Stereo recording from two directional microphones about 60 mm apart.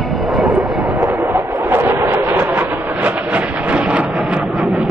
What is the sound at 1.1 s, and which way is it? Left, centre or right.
Train, right.